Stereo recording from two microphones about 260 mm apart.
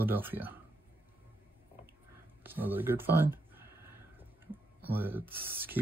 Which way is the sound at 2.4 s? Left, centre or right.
Centre.